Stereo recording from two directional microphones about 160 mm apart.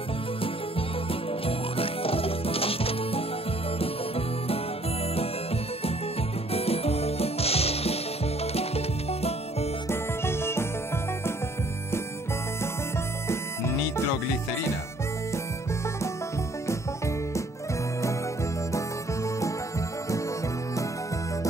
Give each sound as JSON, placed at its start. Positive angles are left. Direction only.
{"t": 1.8, "sound": "music", "side_deg": 35}
{"t": 6.5, "sound": "music", "side_deg": 40}
{"t": 9.8, "sound": "music", "side_deg": 15}
{"t": 13.3, "sound": "music", "side_deg": 15}